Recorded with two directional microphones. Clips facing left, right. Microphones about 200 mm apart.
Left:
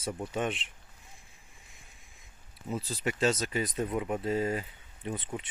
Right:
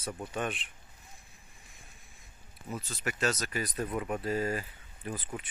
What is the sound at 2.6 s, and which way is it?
Speech, 30° left (ahead or behind).